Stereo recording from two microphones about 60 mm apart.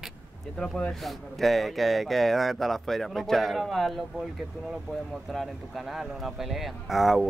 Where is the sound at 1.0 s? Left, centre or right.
Centre.